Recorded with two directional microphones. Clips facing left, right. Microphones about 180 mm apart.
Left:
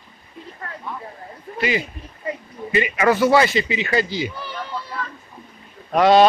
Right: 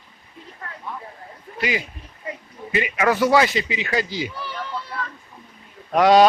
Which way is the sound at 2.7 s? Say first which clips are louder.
Left 2 dB; 5° right (ahead or behind).